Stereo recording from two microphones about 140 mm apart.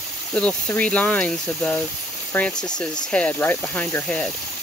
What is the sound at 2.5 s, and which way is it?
Speech, 30° left (ahead or behind).